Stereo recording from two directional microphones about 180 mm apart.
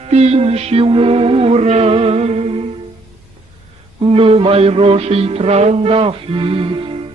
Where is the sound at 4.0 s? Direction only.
30° right (ahead or behind).